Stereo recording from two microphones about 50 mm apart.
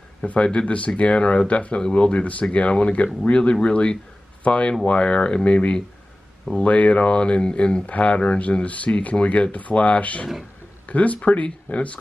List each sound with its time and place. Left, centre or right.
0.3 s speech: left